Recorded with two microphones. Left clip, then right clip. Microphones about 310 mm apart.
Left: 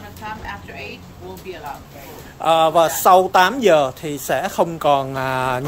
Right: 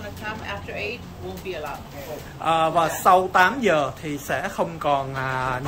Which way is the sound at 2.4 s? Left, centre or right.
Left.